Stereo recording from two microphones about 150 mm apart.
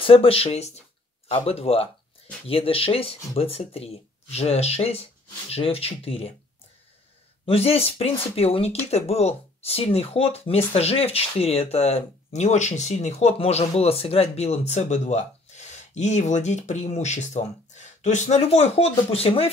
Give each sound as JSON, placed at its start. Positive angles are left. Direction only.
{"t": 0.0, "sound": "speech", "side_deg": 40}
{"t": 7.4, "sound": "speech", "side_deg": 40}